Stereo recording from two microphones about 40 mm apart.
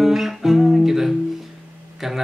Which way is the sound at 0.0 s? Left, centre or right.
Centre.